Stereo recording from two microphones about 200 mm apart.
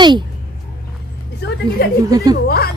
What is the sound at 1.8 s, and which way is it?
Speech, 55° left (ahead or behind).